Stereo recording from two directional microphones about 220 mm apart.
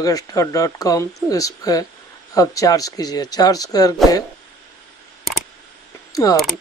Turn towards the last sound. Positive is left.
turn(degrees=15)  # may be behind; listen again after turning